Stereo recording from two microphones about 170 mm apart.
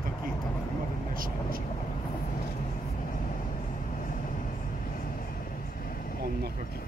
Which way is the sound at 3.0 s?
50° left (ahead or behind).